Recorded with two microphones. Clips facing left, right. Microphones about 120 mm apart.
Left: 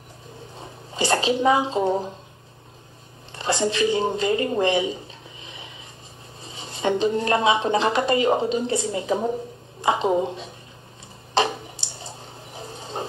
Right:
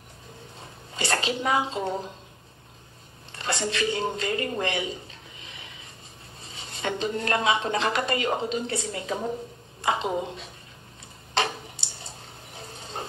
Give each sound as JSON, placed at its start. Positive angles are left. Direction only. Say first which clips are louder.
{"t": 0.9, "sound": "speech", "louder": "left 6 dB", "side_deg": 25}
{"t": 3.3, "sound": "speech", "louder": "left 6 dB", "side_deg": 25}
{"t": 6.5, "sound": "speech", "louder": "left 7 dB", "side_deg": 25}